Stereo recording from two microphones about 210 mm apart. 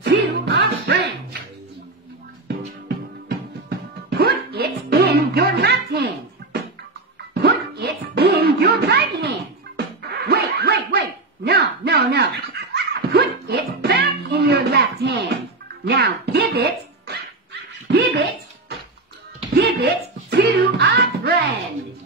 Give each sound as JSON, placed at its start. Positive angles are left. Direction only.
{"t": 0.0, "sound": "music", "side_deg": -50}
{"t": 3.3, "sound": "music", "side_deg": -50}
{"t": 7.3, "sound": "music", "side_deg": -50}
{"t": 9.8, "sound": "dog", "side_deg": -50}
{"t": 12.7, "sound": "a sound", "side_deg": -50}
{"t": 15.8, "sound": "music", "side_deg": -50}
{"t": 17.9, "sound": "a sound", "side_deg": -55}
{"t": 19.5, "sound": "music", "side_deg": -50}